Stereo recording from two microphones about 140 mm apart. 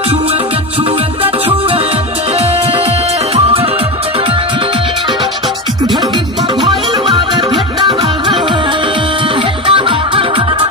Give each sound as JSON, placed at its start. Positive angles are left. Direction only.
{"t": 9.7, "sound": "music", "side_deg": -40}